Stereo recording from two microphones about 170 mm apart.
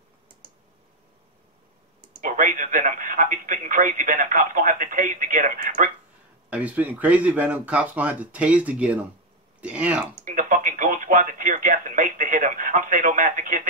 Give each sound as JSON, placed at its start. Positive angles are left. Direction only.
{"t": 2.2, "sound": "speech", "side_deg": -50}
{"t": 6.5, "sound": "speech", "side_deg": -10}
{"t": 10.2, "sound": "speech", "side_deg": -50}